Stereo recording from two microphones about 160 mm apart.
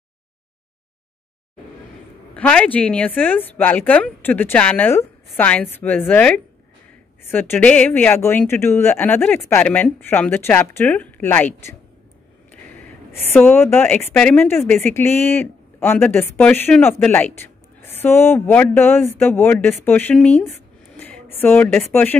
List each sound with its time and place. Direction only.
2.3 s a woman's voice: 10° left (ahead or behind)
13.3 s a woman's voice: 15° left (ahead or behind)